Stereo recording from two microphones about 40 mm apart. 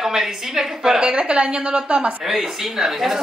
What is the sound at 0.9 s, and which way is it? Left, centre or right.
A woman's voice, right.